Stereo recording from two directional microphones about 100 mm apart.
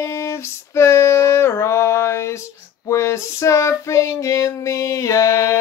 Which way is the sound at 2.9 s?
30° left (ahead or behind).